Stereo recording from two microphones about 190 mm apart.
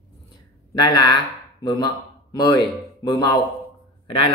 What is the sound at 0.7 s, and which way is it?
Speech, 20° left (ahead or behind).